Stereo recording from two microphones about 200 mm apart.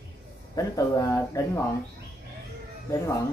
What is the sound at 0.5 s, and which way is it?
Speech, 15° left (ahead or behind).